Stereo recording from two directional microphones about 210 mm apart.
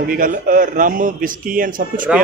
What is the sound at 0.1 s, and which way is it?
A man's voice, 40° right (ahead or behind).